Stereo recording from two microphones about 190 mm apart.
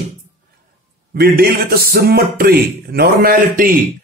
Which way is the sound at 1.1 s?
55° right (ahead or behind).